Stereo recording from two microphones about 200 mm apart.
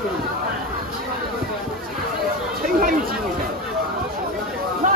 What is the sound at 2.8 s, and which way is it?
Chatter, 45° right (ahead or behind).